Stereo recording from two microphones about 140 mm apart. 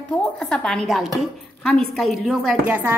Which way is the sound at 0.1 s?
10° left (ahead or behind).